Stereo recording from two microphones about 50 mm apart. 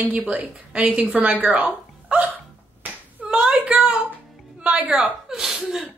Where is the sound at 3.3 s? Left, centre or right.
Centre.